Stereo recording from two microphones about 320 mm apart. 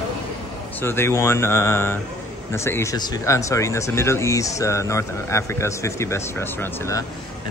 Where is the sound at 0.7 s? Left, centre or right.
Centre.